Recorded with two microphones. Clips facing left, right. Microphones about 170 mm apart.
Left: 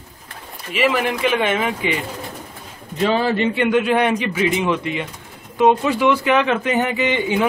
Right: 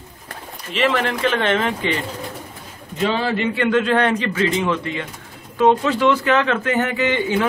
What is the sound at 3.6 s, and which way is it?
Speech, 15° left (ahead or behind).